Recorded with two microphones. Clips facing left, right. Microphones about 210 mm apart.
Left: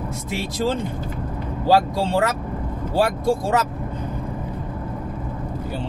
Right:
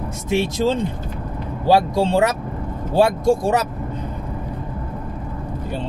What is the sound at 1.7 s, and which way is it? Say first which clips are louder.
Speech: right 2 dB; 15° right (ahead or behind).